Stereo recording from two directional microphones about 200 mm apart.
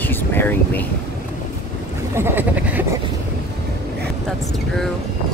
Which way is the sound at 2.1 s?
10° right (ahead or behind).